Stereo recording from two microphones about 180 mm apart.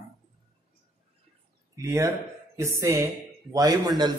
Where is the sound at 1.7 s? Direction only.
15° right (ahead or behind).